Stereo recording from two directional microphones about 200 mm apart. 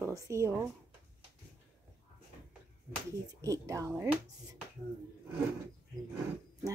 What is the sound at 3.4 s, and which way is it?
Speech, 15° right (ahead or behind).